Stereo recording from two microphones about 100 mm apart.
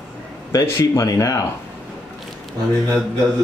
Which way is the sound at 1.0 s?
35° left (ahead or behind).